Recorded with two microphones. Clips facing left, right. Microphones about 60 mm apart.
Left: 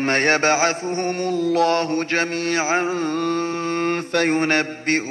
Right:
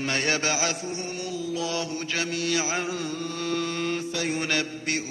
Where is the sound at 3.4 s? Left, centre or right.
Left.